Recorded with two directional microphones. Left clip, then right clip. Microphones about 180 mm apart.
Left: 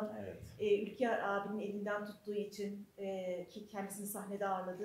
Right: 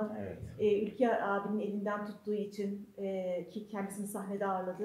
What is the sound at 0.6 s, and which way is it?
Speech, 15° right (ahead or behind).